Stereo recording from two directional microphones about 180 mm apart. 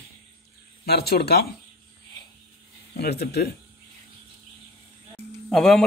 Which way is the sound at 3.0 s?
65° left (ahead or behind).